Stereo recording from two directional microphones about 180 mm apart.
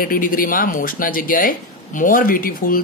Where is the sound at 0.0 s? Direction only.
50° left (ahead or behind).